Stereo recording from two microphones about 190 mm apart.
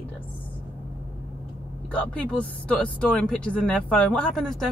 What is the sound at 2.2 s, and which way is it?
Speech, 5° left (ahead or behind).